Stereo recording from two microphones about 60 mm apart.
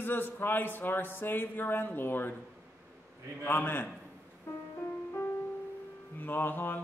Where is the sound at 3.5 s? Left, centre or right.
Left.